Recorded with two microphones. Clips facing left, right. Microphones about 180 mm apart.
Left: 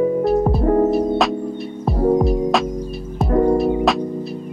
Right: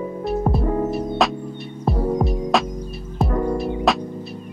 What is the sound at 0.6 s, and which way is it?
Music, 50° left (ahead or behind).